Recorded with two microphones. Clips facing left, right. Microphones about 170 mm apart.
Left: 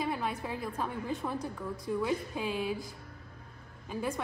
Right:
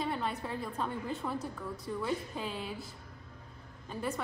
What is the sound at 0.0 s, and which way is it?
A woman's voice, 10° left (ahead or behind).